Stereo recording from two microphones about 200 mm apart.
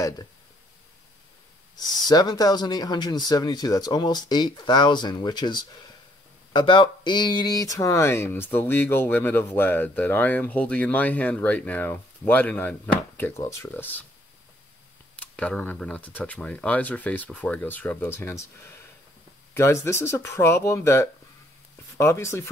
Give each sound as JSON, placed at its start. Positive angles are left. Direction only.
{"t": 1.8, "sound": "speech", "side_deg": 20}
{"t": 15.1, "sound": "speech", "side_deg": 5}
{"t": 19.5, "sound": "speech", "side_deg": 15}